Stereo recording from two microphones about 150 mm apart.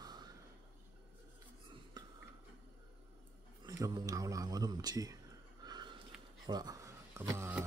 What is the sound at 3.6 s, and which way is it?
A man's voice, 25° right (ahead or behind).